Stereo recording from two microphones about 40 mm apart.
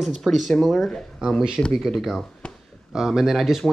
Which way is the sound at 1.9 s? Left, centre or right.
Centre.